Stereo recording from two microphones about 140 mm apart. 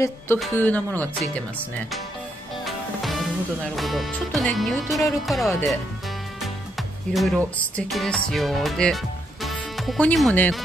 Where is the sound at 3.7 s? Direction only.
Centre (ahead or behind).